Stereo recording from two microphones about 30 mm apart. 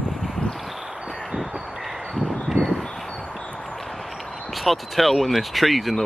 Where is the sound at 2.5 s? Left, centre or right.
Right.